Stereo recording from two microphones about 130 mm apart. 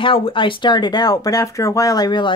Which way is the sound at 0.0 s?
40° left (ahead or behind).